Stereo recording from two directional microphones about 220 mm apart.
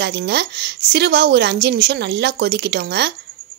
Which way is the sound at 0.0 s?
50° right (ahead or behind).